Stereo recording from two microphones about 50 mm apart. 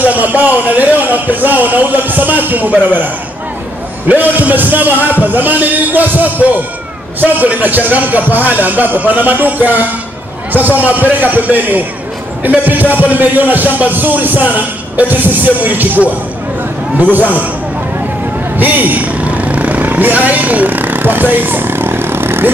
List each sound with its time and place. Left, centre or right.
0.0 s a man's voice: right
4.1 s a man's voice: right
18.6 s vehicle: right